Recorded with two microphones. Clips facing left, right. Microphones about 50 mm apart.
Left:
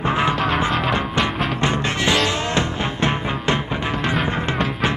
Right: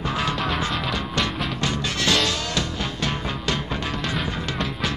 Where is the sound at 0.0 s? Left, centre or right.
Left.